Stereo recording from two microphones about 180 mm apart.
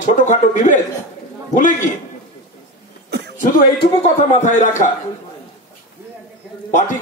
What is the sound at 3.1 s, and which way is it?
Chuckle, 65° right (ahead or behind).